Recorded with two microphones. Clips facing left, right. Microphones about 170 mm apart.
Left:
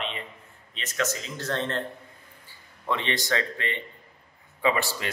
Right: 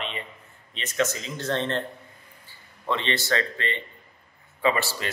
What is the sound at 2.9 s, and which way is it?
Speech, 15° left (ahead or behind).